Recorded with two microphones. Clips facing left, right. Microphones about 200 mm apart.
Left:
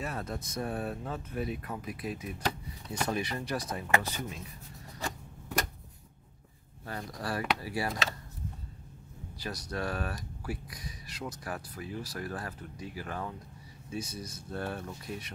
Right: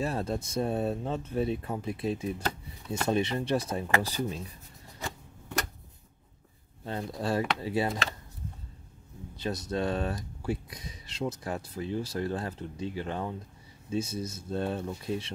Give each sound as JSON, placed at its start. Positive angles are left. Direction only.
{"t": 0.0, "sound": "speech", "side_deg": -30}
{"t": 6.8, "sound": "speech", "side_deg": -25}
{"t": 9.4, "sound": "speech", "side_deg": -25}